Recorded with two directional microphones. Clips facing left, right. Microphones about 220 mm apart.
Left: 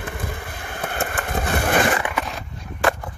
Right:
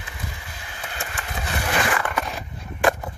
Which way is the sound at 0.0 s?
55° left (ahead or behind).